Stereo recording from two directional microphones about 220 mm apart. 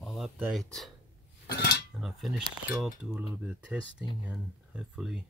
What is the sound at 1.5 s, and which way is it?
Cutlery, 50° left (ahead or behind).